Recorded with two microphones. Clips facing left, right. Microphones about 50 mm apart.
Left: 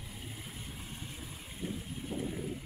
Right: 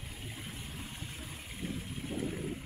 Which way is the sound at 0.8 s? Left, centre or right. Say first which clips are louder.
Right 1 dB; centre.